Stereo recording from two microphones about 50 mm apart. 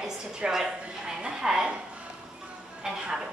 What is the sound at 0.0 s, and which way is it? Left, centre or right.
A woman's voice, centre.